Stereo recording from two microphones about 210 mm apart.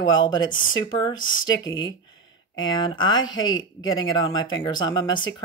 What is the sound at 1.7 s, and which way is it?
Speech, 65° left (ahead or behind).